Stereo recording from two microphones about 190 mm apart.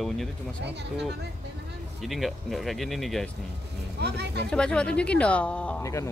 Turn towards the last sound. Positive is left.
turn(degrees=15)  # may be behind; listen again after turning